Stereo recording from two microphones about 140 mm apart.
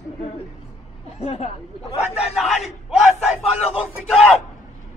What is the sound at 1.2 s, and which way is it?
Speech, 50° left (ahead or behind).